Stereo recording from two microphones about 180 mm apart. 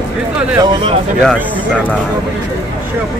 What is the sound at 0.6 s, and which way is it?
Speech, 30° right (ahead or behind).